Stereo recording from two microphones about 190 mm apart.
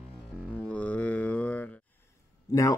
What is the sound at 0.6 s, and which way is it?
Music, 5° left (ahead or behind).